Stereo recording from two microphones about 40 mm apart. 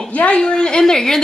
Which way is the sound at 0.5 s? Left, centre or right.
Left.